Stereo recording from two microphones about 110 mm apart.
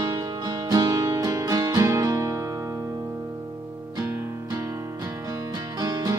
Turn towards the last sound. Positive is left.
turn(degrees=-35)  # may be behind; listen again after turning